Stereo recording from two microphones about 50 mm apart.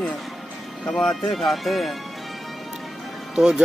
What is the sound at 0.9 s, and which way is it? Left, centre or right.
Speech, centre.